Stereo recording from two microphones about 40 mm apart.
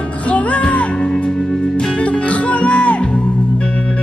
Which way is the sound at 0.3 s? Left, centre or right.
Left.